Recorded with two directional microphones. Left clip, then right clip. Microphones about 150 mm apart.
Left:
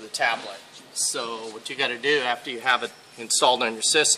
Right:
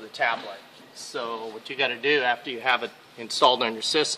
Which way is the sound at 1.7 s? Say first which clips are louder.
Even; 20° right (ahead or behind).